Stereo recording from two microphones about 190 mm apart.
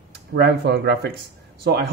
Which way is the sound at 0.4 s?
60° right (ahead or behind).